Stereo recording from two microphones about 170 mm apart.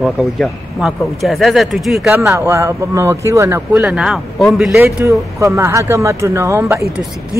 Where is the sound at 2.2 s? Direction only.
15° right (ahead or behind).